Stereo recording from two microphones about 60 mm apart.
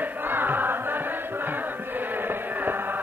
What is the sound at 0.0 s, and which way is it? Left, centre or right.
Chant, right.